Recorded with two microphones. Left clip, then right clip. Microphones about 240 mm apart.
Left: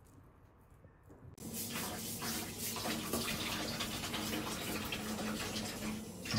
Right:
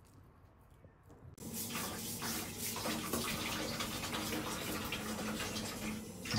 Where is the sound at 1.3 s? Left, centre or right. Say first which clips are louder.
Even; centre.